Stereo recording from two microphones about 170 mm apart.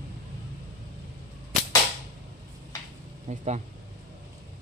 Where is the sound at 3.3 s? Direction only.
45° right (ahead or behind).